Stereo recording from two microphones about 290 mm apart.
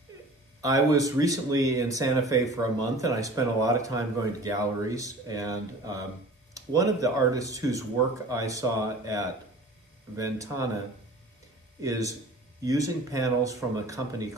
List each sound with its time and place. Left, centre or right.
0.6 s speech: centre
11.8 s speech: centre